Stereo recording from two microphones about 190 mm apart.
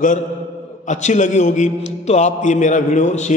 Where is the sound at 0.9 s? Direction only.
40° left (ahead or behind).